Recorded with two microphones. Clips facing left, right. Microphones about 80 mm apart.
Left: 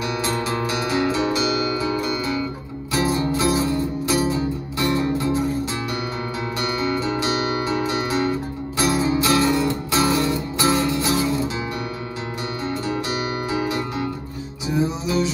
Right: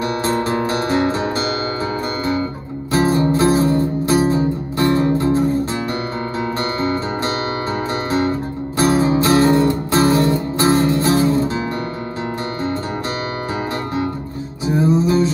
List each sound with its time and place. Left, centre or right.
0.0 s music: right
6.6 s guitar: right
14.7 s music: right